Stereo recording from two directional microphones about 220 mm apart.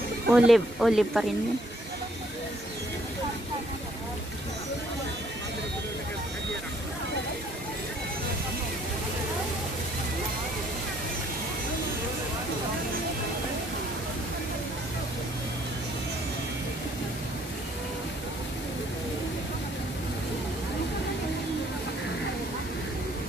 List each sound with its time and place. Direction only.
0.3 s speech: centre (ahead or behind)